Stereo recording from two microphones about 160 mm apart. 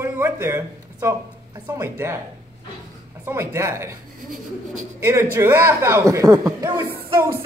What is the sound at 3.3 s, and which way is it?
Speech, 15° right (ahead or behind).